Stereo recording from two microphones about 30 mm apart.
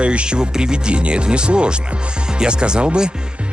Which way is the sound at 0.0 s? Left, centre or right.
Right.